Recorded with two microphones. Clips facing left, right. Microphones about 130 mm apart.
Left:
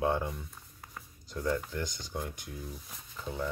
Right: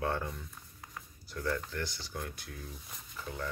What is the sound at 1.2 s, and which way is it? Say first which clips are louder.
Speech: left 3 dB; 20° left (ahead or behind).